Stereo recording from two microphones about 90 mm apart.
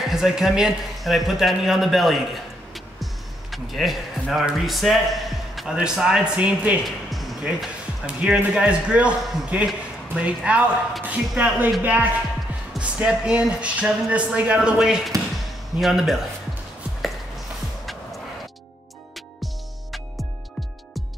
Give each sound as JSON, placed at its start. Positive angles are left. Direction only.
{"t": 0.0, "sound": "speech", "side_deg": -5}
{"t": 2.7, "sound": "music", "side_deg": 0}
{"t": 5.6, "sound": "a man's voice", "side_deg": -5}
{"t": 7.1, "sound": "music", "side_deg": 0}
{"t": 8.1, "sound": "a man's voice", "side_deg": -15}
{"t": 19.4, "sound": "music", "side_deg": 0}